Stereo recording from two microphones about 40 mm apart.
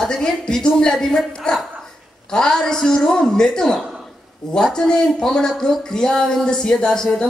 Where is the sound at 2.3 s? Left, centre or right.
Centre.